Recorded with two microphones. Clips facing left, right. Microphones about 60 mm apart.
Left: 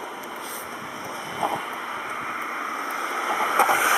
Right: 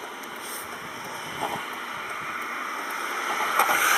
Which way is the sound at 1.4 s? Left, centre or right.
Centre.